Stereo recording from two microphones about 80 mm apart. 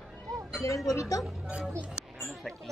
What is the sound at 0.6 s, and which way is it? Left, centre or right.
Speech, left.